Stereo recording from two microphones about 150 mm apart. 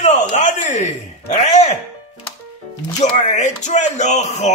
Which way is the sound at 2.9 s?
50° left (ahead or behind).